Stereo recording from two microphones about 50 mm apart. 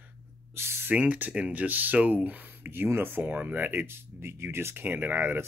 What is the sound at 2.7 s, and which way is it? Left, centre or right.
Speech, right.